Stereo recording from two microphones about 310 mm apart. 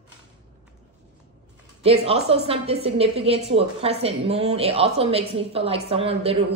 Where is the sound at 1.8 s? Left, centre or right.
Centre.